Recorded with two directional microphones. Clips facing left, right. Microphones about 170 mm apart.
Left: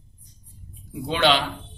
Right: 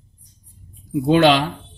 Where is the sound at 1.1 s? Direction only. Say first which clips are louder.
Right 7 dB; 45° right (ahead or behind).